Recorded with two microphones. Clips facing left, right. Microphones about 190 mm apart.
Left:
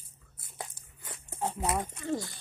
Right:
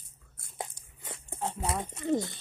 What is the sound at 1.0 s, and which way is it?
Dog, 25° right (ahead or behind).